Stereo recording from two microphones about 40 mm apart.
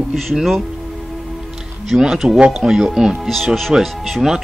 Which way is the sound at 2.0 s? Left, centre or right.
Centre.